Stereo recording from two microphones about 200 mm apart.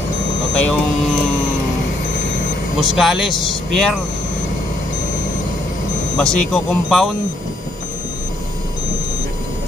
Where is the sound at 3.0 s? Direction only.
Centre (ahead or behind).